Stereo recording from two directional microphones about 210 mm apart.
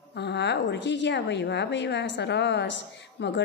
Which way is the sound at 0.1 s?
55° left (ahead or behind).